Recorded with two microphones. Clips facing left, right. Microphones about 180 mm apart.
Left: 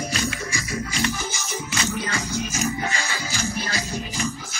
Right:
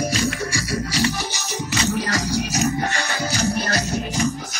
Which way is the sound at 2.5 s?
40° right (ahead or behind).